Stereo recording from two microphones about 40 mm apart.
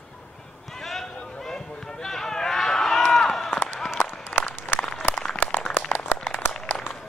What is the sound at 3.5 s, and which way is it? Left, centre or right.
Run, centre.